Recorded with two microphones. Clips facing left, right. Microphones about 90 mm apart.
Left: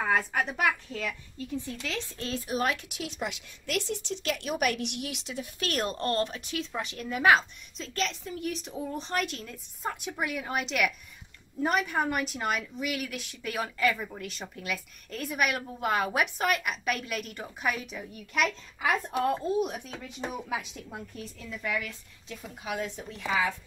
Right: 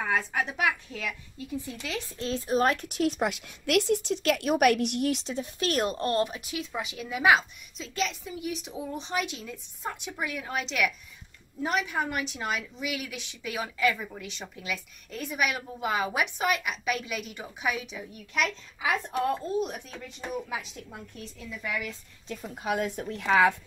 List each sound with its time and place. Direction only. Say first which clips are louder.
0.0 s a woman's voice: left 1 dB; 5° left (ahead or behind); by 2.5 s 20° right (ahead or behind)
2.5 s a woman's voice: right 5 dB; 40° right (ahead or behind); by 20.5 s 10° left (ahead or behind)
21.2 s a woman's voice: left 1 dB; centre (ahead or behind)
21.6 s a woman's voice: left 1 dB; 15° right (ahead or behind)
22.6 s a woman's voice: right 5 dB; 45° right (ahead or behind); by 23.5 s 70° right (ahead or behind)